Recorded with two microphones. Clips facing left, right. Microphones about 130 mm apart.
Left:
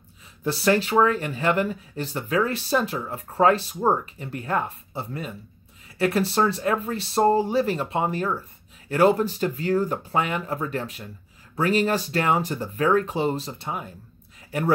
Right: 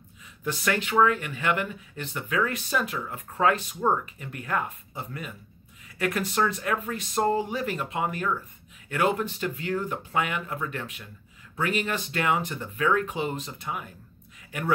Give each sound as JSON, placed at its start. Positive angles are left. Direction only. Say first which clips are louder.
{"t": 0.4, "sound": "speech", "louder": "left 7 dB", "side_deg": 35}